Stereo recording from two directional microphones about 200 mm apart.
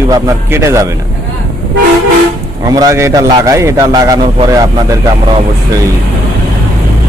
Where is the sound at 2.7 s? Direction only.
15° right (ahead or behind).